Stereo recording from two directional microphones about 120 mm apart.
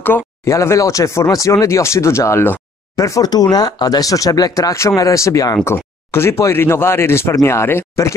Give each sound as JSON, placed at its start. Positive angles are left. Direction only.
{"t": 0.0, "sound": "speech", "side_deg": 20}